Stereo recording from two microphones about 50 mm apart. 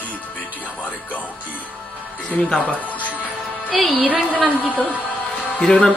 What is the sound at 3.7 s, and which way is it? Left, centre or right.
Speech, centre.